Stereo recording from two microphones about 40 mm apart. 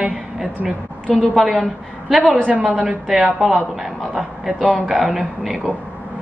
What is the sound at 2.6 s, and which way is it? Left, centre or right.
Speech, right.